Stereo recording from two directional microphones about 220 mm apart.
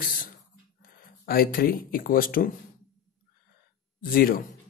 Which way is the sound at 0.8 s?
45° left (ahead or behind).